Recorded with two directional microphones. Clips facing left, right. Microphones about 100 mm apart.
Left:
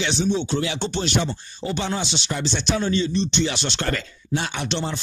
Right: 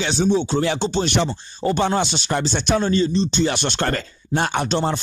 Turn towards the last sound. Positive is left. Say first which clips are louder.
# right 6 dB
turn(degrees=-50)  # may be behind; listen again after turning